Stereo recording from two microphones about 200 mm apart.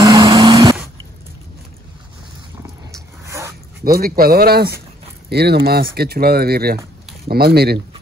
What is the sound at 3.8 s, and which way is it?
Speech, 45° right (ahead or behind).